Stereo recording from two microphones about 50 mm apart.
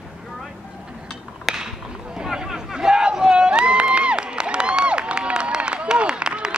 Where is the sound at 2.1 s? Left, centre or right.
Centre.